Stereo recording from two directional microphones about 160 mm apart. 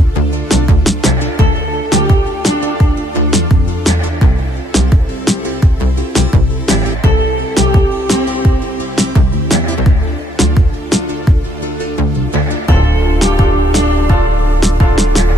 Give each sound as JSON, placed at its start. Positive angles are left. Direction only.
{"t": 0.5, "sound": "music", "side_deg": 0}
{"t": 13.2, "sound": "music", "side_deg": 0}